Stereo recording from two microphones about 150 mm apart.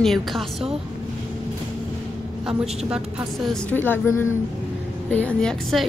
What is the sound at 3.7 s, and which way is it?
Speech, 15° left (ahead or behind).